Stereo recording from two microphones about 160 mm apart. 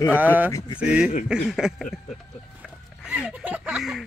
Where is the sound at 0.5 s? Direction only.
20° left (ahead or behind).